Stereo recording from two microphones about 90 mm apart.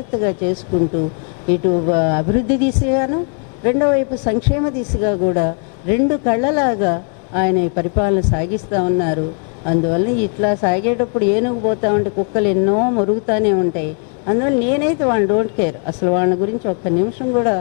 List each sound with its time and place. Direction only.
0.1 s a woman's voice: 15° left (ahead or behind)